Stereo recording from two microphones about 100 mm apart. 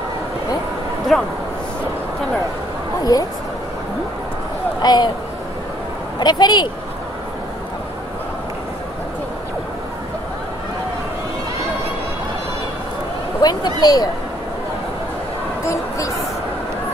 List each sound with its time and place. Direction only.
1.1 s a man's voice: 5° left (ahead or behind)
3.0 s speech: 40° left (ahead or behind)
4.8 s speech: 45° left (ahead or behind)
6.1 s speech: 45° left (ahead or behind)
13.4 s speech: 45° left (ahead or behind)
15.6 s a sound: 30° left (ahead or behind)